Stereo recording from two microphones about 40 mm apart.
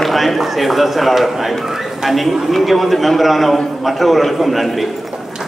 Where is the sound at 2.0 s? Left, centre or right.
Centre.